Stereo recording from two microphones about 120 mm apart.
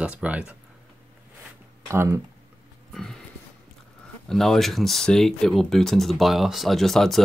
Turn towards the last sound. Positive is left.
turn(degrees=0)  # may be behind; listen again after turning